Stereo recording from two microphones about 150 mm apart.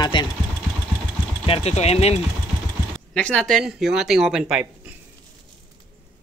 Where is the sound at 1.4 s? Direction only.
40° left (ahead or behind).